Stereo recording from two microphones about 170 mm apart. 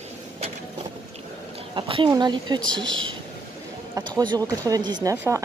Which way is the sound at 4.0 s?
25° right (ahead or behind).